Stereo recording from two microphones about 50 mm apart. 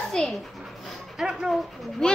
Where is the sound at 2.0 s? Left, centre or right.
Centre.